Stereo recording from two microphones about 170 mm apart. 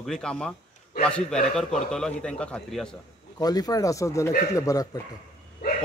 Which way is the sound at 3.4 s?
20° left (ahead or behind).